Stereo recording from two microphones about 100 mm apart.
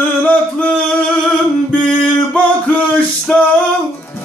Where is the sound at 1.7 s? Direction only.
10° left (ahead or behind).